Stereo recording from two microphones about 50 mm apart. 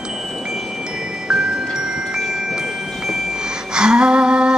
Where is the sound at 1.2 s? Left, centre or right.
Centre.